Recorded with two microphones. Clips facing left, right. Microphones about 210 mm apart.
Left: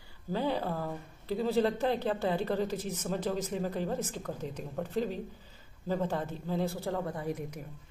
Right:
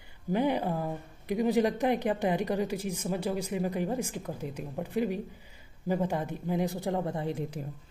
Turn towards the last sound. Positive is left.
turn(degrees=-25)  # may be behind; listen again after turning